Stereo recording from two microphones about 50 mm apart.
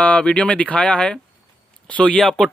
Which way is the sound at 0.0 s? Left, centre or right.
Left.